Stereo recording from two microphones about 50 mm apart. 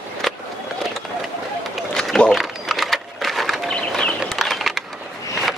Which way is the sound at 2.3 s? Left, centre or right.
Centre.